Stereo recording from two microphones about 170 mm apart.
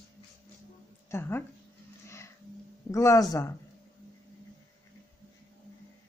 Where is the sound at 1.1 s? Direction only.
15° left (ahead or behind).